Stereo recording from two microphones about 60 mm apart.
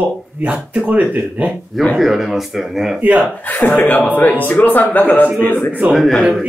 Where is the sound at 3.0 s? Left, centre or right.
Centre.